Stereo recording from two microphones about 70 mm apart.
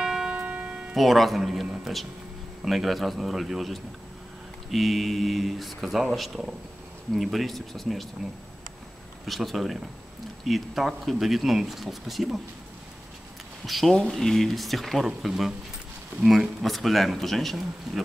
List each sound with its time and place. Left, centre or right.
0.0 s music: centre
0.4 s music: right
0.9 s speech: centre
9.2 s speech: centre
13.7 s speech: centre